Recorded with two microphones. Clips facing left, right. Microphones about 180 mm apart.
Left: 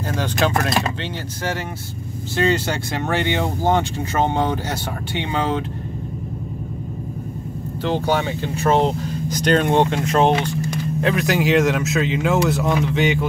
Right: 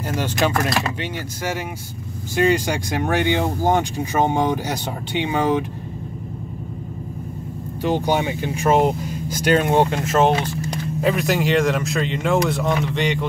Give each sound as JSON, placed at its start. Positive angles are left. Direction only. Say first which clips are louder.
{"t": 0.1, "sound": "speech", "louder": "even", "side_deg": -10}
{"t": 2.3, "sound": "speech", "louder": "right 1 dB", "side_deg": -10}
{"t": 7.8, "sound": "speech", "louder": "right 1 dB", "side_deg": -15}